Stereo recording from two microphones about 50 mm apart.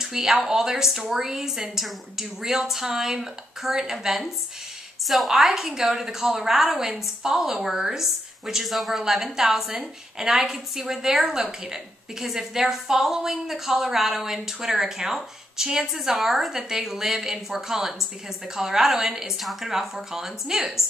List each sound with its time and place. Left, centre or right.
0.0 s a woman's voice: centre